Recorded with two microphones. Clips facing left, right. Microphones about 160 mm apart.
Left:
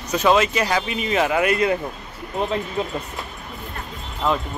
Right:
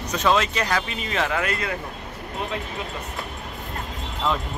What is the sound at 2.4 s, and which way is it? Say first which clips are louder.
Speech: left 6 dB; 30° left (ahead or behind).